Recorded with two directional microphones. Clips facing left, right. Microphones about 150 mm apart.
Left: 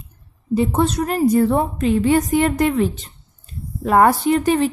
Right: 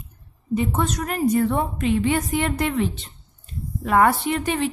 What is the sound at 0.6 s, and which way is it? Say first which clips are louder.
A woman's voice: left 6 dB; 35° left (ahead or behind).